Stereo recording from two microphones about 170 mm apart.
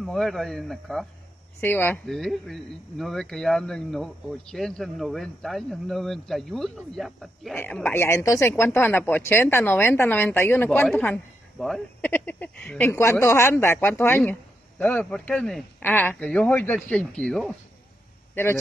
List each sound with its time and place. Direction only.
0.0 s speech: centre (ahead or behind)
1.6 s speech: 10° left (ahead or behind)
2.0 s a woman's voice: centre (ahead or behind)
18.3 s a man's voice: 15° left (ahead or behind)